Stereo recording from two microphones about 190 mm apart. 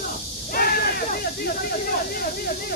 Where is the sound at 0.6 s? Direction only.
50° left (ahead or behind).